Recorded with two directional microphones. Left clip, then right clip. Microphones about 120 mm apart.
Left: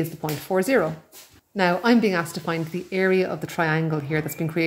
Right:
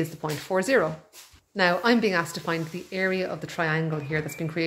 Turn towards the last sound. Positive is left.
turn(degrees=20)  # may be behind; listen again after turning